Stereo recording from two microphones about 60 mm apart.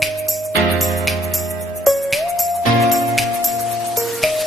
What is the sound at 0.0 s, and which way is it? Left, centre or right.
Music, centre.